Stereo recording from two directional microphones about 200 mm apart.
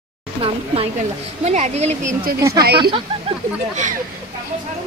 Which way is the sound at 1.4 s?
35° right (ahead or behind).